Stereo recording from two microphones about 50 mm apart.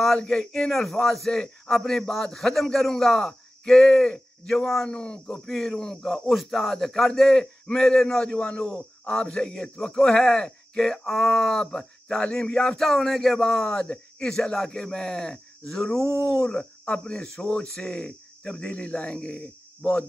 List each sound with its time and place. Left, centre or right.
0.2 s a man's voice: centre
4.8 s speech: left
5.4 s a man's voice: centre
10.8 s speech: centre
16.4 s speech: centre